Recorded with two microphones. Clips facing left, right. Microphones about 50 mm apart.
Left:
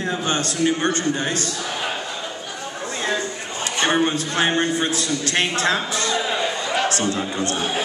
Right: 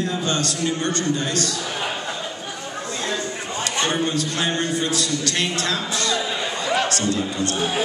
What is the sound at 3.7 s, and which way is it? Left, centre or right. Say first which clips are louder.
A man's voice: left 4 dB; left.